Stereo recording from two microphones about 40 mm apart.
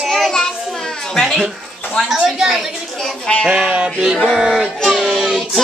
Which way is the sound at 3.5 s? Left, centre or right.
Right.